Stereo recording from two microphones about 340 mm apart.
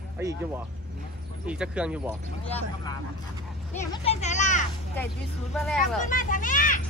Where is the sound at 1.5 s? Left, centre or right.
Centre.